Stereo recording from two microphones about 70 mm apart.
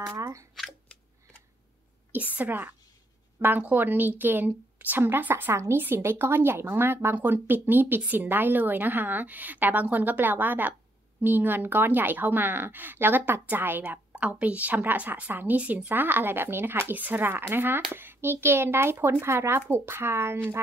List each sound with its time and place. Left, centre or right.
0.2 s speech: right
2.1 s speech: right
5.5 s speech: right
14.1 s speech: centre; by 20.3 s right